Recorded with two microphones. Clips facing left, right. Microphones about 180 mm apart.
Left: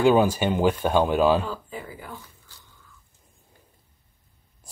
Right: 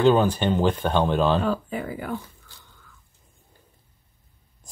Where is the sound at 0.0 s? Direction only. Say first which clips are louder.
Even; 10° left (ahead or behind).